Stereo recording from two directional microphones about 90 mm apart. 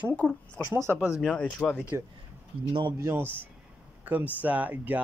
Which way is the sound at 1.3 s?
15° left (ahead or behind).